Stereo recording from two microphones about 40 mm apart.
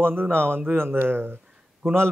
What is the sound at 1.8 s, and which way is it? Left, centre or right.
Speech, right.